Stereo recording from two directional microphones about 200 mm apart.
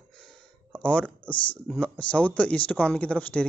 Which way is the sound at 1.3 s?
25° left (ahead or behind).